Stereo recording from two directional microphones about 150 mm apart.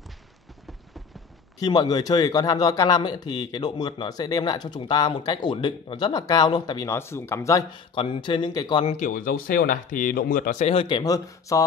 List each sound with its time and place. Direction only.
1.6 s speech: 25° left (ahead or behind)
7.9 s speech: 35° left (ahead or behind)
8.8 s speech: 55° left (ahead or behind)
10.7 s speech: 35° left (ahead or behind)